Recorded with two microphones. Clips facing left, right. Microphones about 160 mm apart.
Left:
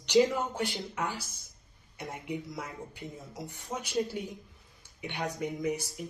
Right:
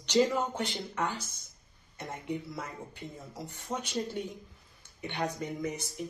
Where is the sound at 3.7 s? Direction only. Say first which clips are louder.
Left 2 dB; 5° left (ahead or behind).